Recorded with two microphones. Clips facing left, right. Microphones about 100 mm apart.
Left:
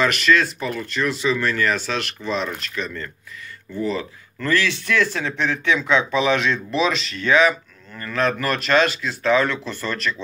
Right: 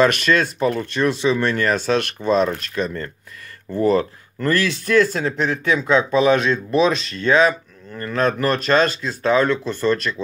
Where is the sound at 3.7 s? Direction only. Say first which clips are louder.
Right 7 dB; 55° right (ahead or behind).